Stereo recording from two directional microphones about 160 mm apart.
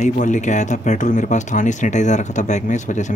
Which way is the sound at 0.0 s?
50° left (ahead or behind).